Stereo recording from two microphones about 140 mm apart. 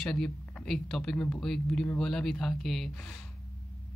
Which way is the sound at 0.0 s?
5° left (ahead or behind).